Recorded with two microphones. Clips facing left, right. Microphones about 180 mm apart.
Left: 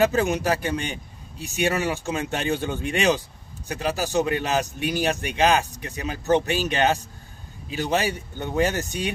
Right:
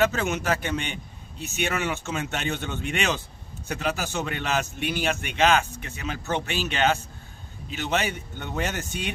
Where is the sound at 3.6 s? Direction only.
35° left (ahead or behind).